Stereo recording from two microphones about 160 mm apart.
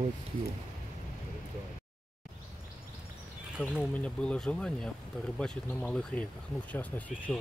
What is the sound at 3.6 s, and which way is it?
Speech, 10° left (ahead or behind).